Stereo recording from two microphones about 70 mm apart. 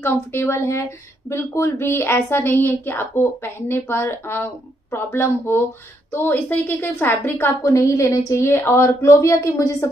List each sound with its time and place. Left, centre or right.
0.0 s speech: left
7.6 s speech: left